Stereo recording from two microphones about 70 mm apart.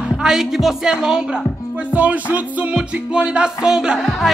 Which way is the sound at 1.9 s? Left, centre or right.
Right.